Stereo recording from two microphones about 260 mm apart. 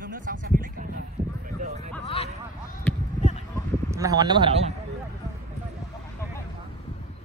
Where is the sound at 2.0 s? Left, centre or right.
Left.